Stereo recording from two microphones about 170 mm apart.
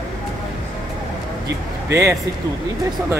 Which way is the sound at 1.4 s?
15° right (ahead or behind).